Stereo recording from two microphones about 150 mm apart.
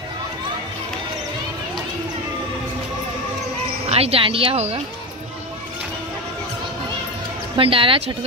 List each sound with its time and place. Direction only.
3.9 s speech: 40° right (ahead or behind)
7.5 s speech: 35° right (ahead or behind)